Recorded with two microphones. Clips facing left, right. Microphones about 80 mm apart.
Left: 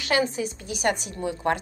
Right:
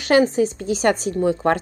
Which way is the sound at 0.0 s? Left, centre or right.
Right.